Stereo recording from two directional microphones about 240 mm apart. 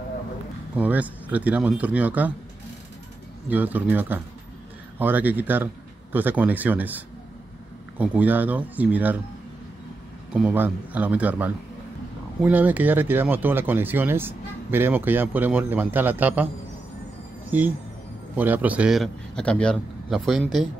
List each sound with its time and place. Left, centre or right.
0.7 s speech: centre
3.4 s speech: centre
8.0 s speech: centre
10.3 s speech: centre
17.5 s a man's voice: centre